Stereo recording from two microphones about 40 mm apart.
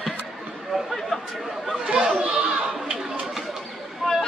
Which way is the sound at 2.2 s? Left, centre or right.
Right.